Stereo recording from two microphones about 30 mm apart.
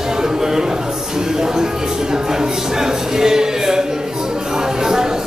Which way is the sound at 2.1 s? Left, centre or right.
Right.